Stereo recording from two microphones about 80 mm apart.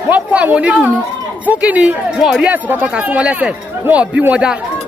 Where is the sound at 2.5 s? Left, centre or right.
Right.